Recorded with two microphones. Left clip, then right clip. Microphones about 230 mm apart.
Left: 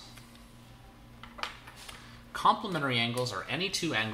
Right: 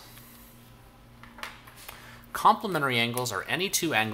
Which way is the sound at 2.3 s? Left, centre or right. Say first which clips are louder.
Right 4 dB; right.